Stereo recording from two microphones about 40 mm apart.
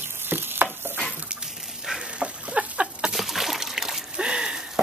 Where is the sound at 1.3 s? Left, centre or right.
Centre.